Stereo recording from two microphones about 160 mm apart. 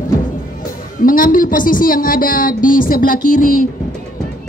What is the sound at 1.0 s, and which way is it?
Speech, 60° left (ahead or behind).